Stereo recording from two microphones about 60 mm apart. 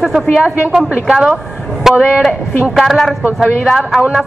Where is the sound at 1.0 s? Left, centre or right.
Centre.